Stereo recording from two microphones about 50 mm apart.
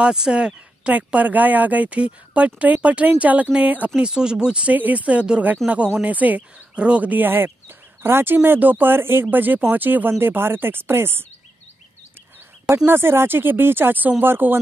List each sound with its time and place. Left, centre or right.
0.0 s speech: centre
0.9 s speech: right
3.9 s speech: centre
4.7 s speech: right
5.6 s speech: centre
6.0 s speech: right
12.8 s speech: right